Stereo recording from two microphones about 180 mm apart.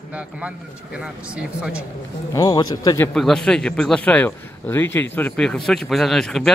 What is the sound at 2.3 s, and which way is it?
Speech, 20° left (ahead or behind).